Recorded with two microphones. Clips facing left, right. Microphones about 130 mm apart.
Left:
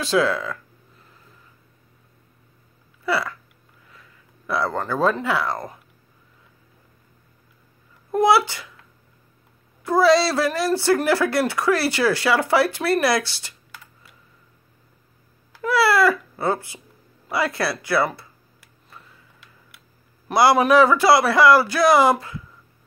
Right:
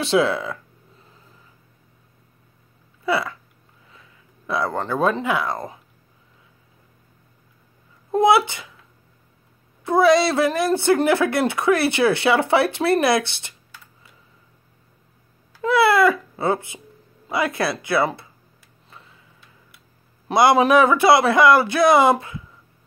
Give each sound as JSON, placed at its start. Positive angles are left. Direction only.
{"t": 0.0, "sound": "a woman's voice", "side_deg": -25}
{"t": 3.1, "sound": "a woman's voice", "side_deg": -20}
{"t": 4.5, "sound": "a woman's voice", "side_deg": -20}
{"t": 8.1, "sound": "a woman's voice", "side_deg": -20}
{"t": 9.8, "sound": "a woman's voice", "side_deg": -20}
{"t": 15.6, "sound": "a woman's voice", "side_deg": -20}
{"t": 20.2, "sound": "a woman's voice", "side_deg": -20}